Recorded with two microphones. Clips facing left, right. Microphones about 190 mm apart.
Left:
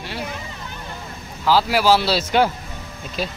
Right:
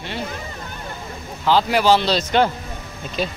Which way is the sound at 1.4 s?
5° left (ahead or behind).